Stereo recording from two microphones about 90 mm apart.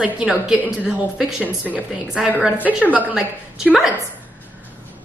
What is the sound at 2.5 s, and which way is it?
Speech, 20° right (ahead or behind).